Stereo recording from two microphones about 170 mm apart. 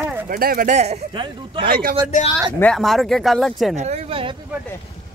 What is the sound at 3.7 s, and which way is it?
Speech, 40° right (ahead or behind).